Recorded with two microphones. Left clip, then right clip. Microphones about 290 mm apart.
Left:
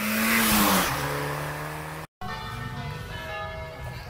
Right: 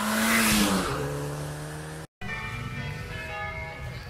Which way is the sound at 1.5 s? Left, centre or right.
Left.